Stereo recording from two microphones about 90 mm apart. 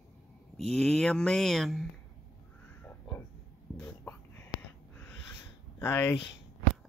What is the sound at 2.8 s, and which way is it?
Crow, 20° left (ahead or behind).